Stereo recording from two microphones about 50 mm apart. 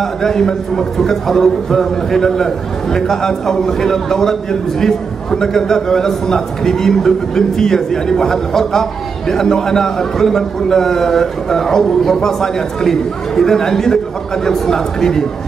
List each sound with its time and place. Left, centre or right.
0.0 s a man's voice: centre